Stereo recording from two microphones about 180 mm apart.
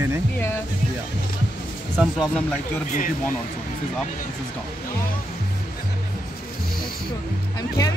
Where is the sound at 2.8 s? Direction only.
45° left (ahead or behind).